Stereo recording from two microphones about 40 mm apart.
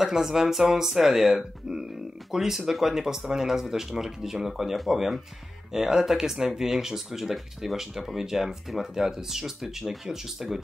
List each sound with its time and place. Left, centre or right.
0.0 s speech: centre
1.3 s speech: centre